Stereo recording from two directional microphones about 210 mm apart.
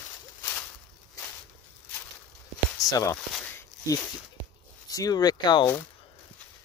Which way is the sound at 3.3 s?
10° left (ahead or behind).